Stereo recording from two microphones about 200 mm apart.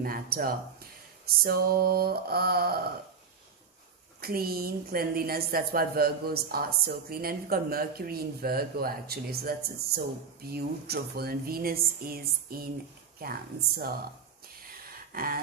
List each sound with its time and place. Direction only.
0.0 s a woman's voice: 45° right (ahead or behind)
4.2 s a woman's voice: 50° right (ahead or behind)
14.7 s a sound: 45° right (ahead or behind)